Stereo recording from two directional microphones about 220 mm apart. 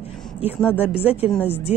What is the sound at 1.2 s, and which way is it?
Speech, 5° left (ahead or behind).